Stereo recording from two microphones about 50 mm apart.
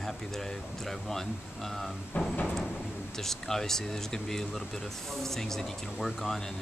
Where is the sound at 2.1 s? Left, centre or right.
Left.